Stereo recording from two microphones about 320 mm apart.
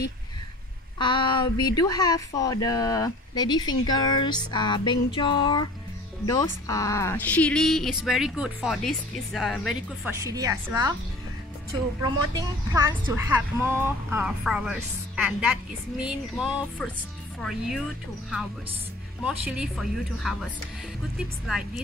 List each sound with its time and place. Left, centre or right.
0.9 s a woman's voice: centre
10.3 s a woman's voice: centre
12.0 s a woman's voice: centre
19.2 s a woman's voice: centre
21.5 s a woman's voice: centre